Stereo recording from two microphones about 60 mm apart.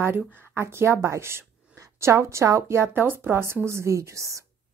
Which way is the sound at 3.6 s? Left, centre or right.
Right.